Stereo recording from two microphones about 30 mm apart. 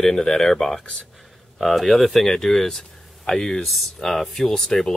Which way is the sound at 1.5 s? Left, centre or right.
Centre.